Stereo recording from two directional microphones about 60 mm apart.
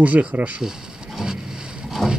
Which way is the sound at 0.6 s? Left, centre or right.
Centre.